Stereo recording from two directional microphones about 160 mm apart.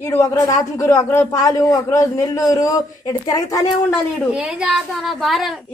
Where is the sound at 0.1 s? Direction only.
20° left (ahead or behind).